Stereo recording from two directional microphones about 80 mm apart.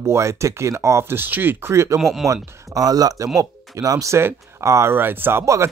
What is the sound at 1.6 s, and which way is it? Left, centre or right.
Speech, right.